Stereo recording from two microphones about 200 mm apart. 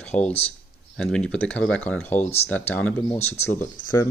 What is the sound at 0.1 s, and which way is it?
Speech, 35° left (ahead or behind).